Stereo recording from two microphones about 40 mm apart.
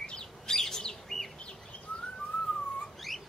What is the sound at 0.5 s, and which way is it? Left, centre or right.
Bird, centre.